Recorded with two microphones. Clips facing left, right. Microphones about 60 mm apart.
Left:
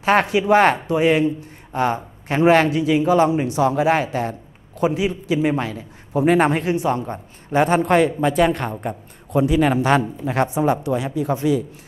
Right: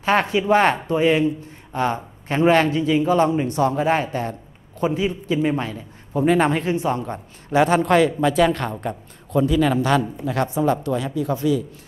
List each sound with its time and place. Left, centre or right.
0.1 s a man's voice: centre
9.3 s speech: left